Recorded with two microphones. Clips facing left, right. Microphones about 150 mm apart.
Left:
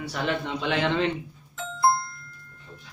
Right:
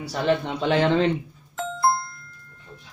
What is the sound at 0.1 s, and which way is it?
Speech, 35° right (ahead or behind).